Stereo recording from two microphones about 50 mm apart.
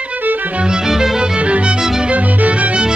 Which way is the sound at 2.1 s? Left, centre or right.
Right.